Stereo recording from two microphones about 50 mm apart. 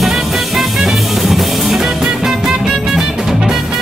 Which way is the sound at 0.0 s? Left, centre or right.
Centre.